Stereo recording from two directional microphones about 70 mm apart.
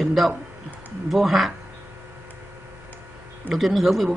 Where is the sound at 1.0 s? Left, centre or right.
Centre.